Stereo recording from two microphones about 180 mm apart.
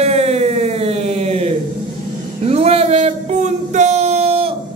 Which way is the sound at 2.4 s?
35° right (ahead or behind).